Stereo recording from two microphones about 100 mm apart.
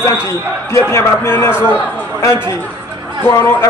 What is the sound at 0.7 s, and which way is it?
Speech, 25° left (ahead or behind).